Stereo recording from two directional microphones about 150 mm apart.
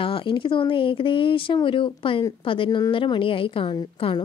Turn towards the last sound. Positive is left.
turn(degrees=35)  # may be behind; listen again after turning